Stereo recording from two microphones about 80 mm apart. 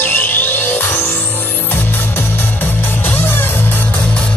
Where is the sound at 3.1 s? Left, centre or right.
Left.